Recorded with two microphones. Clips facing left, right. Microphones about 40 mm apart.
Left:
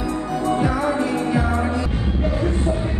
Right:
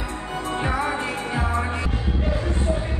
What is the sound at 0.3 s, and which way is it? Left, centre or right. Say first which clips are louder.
Music: left 4 dB; right.